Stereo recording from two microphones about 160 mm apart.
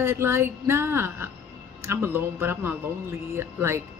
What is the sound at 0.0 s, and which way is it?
Speech, 15° right (ahead or behind).